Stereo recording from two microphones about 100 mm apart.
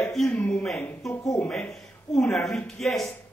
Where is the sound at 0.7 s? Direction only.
25° left (ahead or behind).